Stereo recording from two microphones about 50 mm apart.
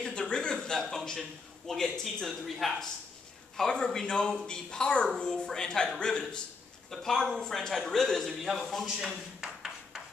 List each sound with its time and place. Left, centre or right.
0.0 s a sound: centre
1.7 s a man's voice: centre
6.9 s speech: centre
8.3 s a man's voice: centre
8.8 s speech: centre